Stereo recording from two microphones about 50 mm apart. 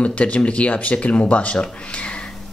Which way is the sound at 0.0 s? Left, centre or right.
Left.